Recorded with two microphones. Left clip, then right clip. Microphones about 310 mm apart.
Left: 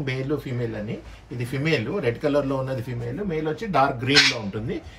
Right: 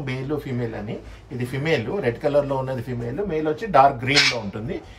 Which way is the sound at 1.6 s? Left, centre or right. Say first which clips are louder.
Right 1 dB; centre.